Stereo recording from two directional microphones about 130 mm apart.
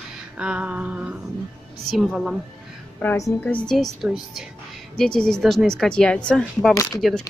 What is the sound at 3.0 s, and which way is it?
Speech, 15° left (ahead or behind).